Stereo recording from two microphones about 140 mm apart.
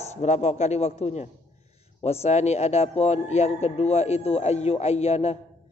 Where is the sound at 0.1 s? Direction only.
55° left (ahead or behind).